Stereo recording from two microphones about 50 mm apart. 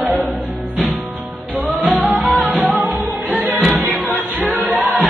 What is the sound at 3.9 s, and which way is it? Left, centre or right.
Music, left.